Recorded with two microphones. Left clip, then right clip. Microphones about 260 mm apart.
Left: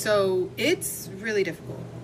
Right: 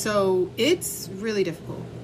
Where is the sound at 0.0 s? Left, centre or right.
Centre.